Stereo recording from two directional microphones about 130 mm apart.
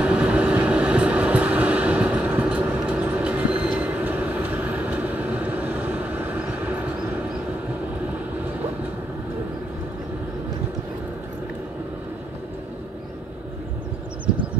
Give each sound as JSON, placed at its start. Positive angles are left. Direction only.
{"t": 0.0, "sound": "vehicle", "side_deg": -10}